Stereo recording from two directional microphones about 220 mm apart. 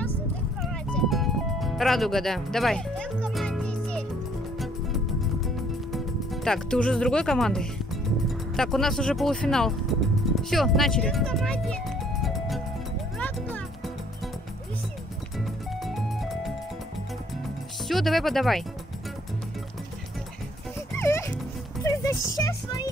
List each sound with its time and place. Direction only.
0.6 s music: centre (ahead or behind)
5.9 s speech: centre (ahead or behind)
10.3 s music: centre (ahead or behind)
15.3 s music: centre (ahead or behind)
17.8 s speech: centre (ahead or behind)
21.0 s music: 10° left (ahead or behind)